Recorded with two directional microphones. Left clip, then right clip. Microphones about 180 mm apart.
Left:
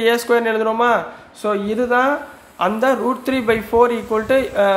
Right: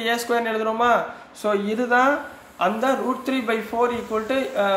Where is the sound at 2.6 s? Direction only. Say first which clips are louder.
Left 4 dB; 35° left (ahead or behind).